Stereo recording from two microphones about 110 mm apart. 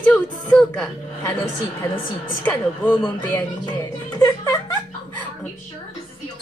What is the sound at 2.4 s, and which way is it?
Speech, 15° left (ahead or behind).